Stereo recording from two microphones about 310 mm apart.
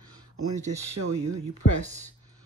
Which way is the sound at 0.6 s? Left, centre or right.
Right.